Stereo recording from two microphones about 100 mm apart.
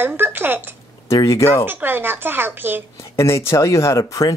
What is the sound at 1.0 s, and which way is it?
Speech, 35° left (ahead or behind).